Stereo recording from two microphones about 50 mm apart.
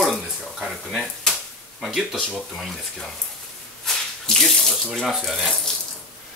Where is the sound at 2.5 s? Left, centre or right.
Centre.